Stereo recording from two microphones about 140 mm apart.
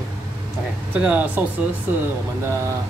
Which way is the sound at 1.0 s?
10° right (ahead or behind).